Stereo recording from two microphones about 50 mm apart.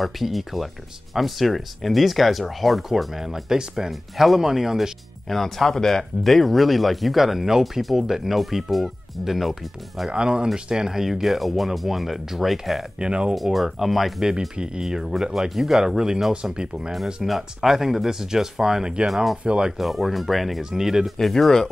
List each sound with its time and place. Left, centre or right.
0.0 s speech: centre
5.3 s speech: centre
10.1 s speech: centre
13.0 s speech: centre
13.3 s speech: centre
19.4 s speech: right
19.8 s speech: centre
21.3 s speech: centre